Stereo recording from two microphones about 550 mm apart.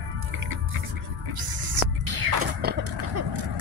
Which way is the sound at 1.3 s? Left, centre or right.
Right.